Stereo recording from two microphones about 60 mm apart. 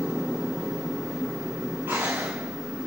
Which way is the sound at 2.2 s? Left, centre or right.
Centre.